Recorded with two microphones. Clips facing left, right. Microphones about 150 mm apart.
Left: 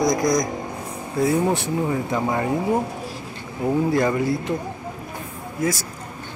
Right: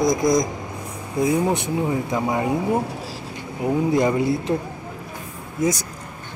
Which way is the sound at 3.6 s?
20° right (ahead or behind).